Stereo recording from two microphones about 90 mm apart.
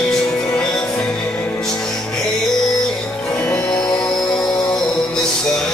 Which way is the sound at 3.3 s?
20° left (ahead or behind).